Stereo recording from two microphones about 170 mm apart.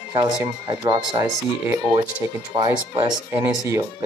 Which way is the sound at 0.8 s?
25° right (ahead or behind).